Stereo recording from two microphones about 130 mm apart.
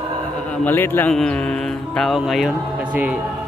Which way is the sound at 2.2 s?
Centre (ahead or behind).